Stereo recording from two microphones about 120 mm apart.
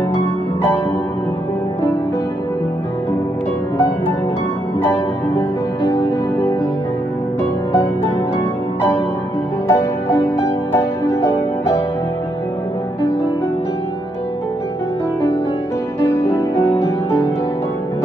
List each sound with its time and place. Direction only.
7.7 s music: 25° left (ahead or behind)
9.7 s music: 20° left (ahead or behind)
16.1 s music: 20° left (ahead or behind)